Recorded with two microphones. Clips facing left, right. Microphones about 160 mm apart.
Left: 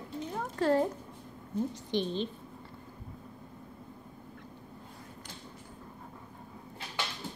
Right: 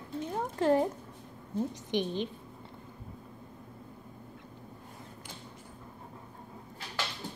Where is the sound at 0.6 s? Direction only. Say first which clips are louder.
Right 1 dB; 20° right (ahead or behind).